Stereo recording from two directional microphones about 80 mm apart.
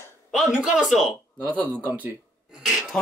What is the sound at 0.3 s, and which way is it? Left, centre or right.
Speech, centre.